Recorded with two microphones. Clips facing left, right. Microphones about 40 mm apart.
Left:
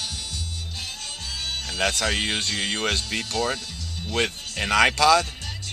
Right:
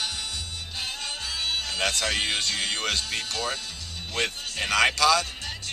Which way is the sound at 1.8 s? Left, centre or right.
Centre.